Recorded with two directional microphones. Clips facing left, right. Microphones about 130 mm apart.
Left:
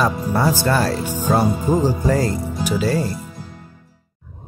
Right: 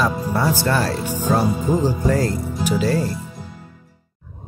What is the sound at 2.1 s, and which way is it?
Speech, centre (ahead or behind).